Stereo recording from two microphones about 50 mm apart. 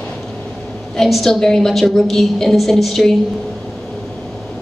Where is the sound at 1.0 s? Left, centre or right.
Centre.